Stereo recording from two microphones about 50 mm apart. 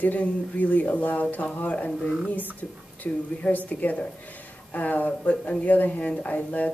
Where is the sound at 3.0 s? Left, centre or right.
Left.